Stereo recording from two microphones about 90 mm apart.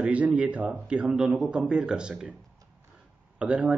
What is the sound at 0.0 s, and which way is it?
A man's voice, 15° right (ahead or behind).